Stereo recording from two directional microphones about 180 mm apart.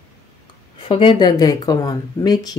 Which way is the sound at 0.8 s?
30° left (ahead or behind).